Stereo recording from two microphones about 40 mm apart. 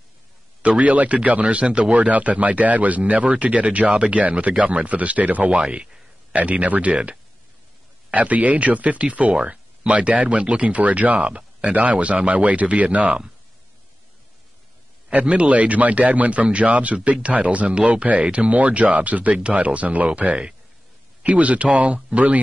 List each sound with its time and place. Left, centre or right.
0.6 s speech: right
2.0 s speech: right
3.8 s speech: right
4.1 s speech: right
15.1 s speech: right